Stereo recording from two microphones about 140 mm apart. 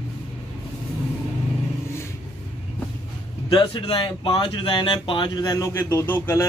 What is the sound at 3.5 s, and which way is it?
Speech, 35° left (ahead or behind).